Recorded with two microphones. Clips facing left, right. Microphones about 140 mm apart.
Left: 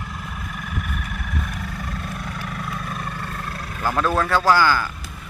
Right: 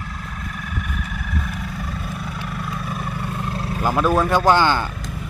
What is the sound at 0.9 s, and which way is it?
Vehicle, centre (ahead or behind).